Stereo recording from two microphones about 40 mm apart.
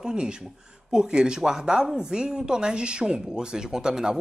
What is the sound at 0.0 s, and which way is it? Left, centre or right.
A woman's voice, right.